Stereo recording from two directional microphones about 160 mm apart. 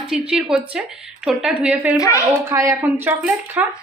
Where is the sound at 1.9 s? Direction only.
20° left (ahead or behind).